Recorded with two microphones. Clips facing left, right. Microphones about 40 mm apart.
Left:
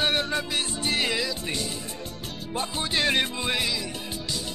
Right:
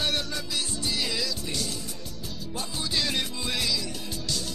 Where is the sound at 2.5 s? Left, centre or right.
Left.